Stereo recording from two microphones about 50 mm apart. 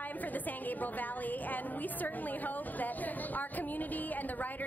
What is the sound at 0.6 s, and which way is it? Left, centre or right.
A woman's voice, left.